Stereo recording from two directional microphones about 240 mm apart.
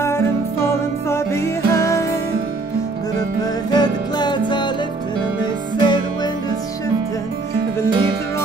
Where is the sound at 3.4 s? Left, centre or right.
Centre.